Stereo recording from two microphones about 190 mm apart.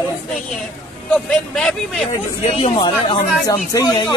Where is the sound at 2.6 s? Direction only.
25° left (ahead or behind).